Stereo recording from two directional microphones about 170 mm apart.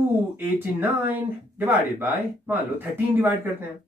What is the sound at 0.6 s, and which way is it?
Speech, 10° right (ahead or behind).